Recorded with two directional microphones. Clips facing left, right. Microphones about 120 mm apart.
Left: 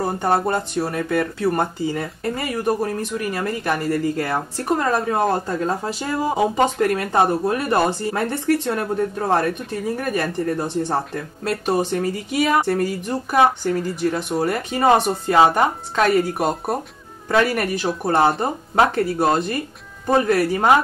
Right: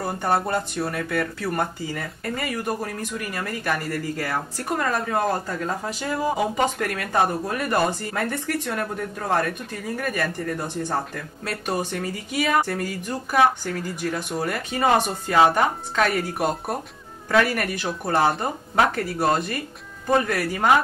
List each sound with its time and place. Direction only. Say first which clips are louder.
0.0 s speech: left 4 dB; 30° left (ahead or behind)